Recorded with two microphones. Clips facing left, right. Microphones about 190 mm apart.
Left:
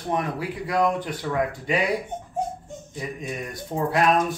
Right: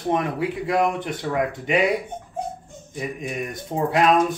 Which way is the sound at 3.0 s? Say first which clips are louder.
Right 4 dB; 20° right (ahead or behind).